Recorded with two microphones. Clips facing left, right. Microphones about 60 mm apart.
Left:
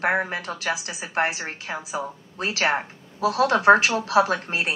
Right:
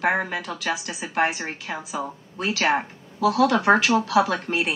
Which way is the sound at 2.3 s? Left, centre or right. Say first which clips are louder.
Right 1 dB; left.